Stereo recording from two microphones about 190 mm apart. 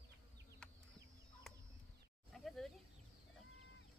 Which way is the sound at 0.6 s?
5° left (ahead or behind).